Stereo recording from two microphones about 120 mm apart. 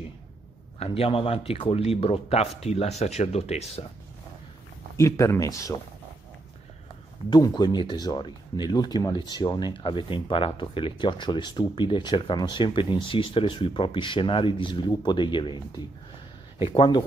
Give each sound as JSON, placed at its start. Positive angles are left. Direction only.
{"t": 0.7, "sound": "speech", "side_deg": 55}
{"t": 4.9, "sound": "speech", "side_deg": 25}
{"t": 7.2, "sound": "speech", "side_deg": 35}